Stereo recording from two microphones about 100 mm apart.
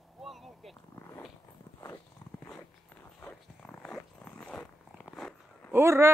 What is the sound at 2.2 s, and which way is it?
Dog, 15° left (ahead or behind).